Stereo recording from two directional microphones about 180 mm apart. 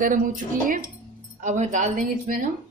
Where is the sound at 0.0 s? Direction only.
45° right (ahead or behind).